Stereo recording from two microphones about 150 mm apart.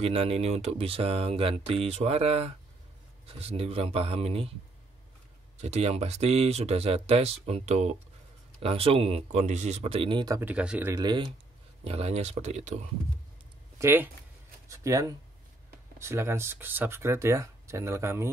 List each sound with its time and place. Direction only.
0.0 s speech: 40° right (ahead or behind)
5.6 s speech: 45° right (ahead or behind); by 10.4 s 30° right (ahead or behind)
10.4 s speech: 5° right (ahead or behind)
10.9 s speech: 30° right (ahead or behind)
11.8 s speech: 45° right (ahead or behind)
13.7 s speech: 15° right (ahead or behind)